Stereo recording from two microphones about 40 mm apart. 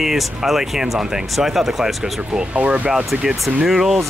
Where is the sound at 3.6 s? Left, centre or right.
Centre.